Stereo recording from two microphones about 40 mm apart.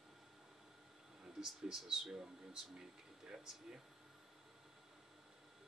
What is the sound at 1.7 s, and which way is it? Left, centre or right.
Speech, centre.